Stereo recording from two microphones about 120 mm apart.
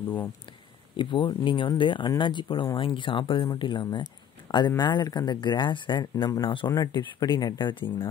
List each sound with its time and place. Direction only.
0.9 s speech: 45° left (ahead or behind)